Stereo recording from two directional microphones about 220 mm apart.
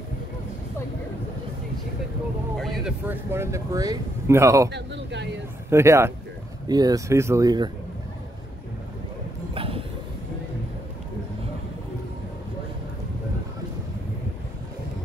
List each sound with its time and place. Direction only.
2.5 s speech: centre (ahead or behind)
4.6 s speech: 50° right (ahead or behind)
5.7 s speech: 10° right (ahead or behind)
9.5 s a sound: 25° right (ahead or behind)